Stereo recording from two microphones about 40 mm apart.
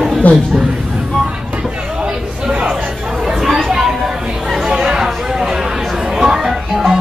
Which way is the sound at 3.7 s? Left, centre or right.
Centre.